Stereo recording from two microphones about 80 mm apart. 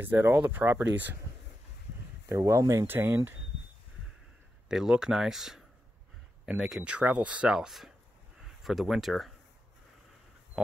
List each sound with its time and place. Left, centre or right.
0.0 s speech: right
2.2 s speech: right
2.9 s speech: right
4.6 s speech: centre